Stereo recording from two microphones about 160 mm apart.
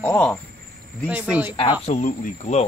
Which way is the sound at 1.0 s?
10° right (ahead or behind).